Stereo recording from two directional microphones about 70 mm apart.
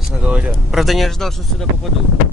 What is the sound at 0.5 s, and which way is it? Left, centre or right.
Speech, centre.